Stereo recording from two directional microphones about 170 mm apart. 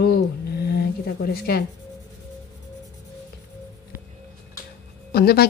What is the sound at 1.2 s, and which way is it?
Speech, 65° left (ahead or behind).